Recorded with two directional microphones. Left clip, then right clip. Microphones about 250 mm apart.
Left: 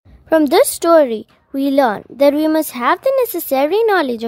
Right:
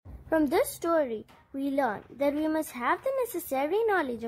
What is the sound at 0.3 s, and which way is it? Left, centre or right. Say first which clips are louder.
Speech: left 14 dB; left.